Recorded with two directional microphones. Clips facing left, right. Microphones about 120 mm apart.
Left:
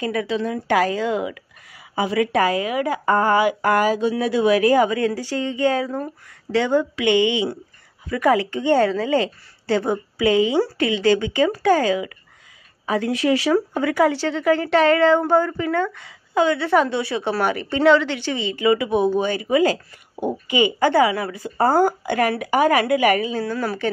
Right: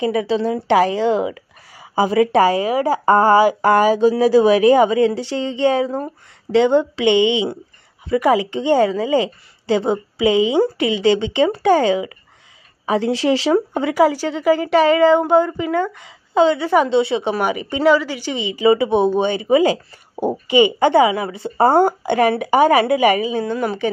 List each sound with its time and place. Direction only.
0.0 s a woman's voice: 20° right (ahead or behind)
4.6 s speech: 25° right (ahead or behind)
13.9 s speech: 10° right (ahead or behind)
18.6 s speech: 30° right (ahead or behind)